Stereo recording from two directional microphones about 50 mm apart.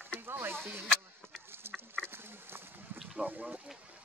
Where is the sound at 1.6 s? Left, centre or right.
Right.